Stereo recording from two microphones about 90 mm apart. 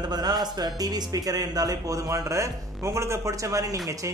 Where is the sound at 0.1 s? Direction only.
50° right (ahead or behind).